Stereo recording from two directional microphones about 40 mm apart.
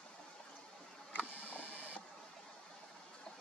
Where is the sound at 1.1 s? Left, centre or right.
Left.